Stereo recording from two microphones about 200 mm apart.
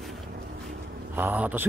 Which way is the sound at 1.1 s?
10° right (ahead or behind).